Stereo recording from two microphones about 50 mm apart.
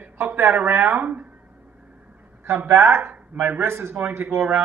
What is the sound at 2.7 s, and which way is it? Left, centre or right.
A man's voice, right.